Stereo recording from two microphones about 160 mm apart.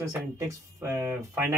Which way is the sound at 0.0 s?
20° right (ahead or behind).